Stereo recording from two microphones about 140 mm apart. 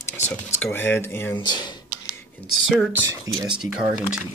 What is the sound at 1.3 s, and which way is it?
Speech, 30° left (ahead or behind).